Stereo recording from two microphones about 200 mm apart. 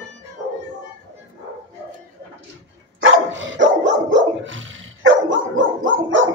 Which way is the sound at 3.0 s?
70° right (ahead or behind).